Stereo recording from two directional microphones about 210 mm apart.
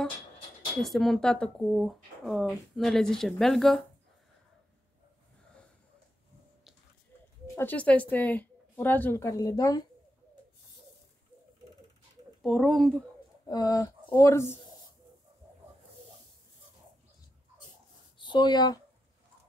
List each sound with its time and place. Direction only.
0.8 s speech: centre (ahead or behind)
7.5 s a woman's voice: 10° left (ahead or behind)
12.4 s speech: centre (ahead or behind)
13.5 s a woman's voice: 15° left (ahead or behind)
18.2 s speech: 20° left (ahead or behind)